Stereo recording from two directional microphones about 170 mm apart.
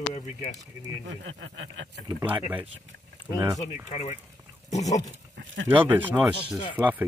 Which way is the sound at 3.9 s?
40° left (ahead or behind).